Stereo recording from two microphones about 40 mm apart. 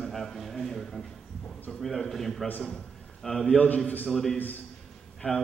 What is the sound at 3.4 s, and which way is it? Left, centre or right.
Speech, left.